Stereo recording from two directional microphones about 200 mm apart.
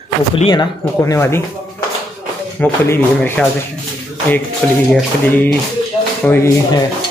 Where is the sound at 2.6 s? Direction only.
5° left (ahead or behind).